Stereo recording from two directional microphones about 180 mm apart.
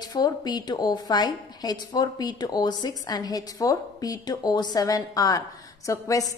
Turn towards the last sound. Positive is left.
turn(degrees=20)  # may be behind; listen again after turning